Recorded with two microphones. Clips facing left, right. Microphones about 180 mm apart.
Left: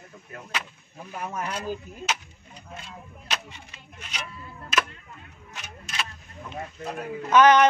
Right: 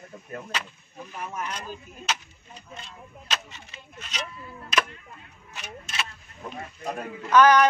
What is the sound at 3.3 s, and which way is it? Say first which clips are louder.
Speech: even; 15° left (ahead or behind).